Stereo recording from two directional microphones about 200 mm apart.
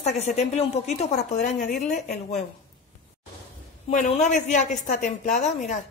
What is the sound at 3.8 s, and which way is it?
A woman's voice, 35° left (ahead or behind).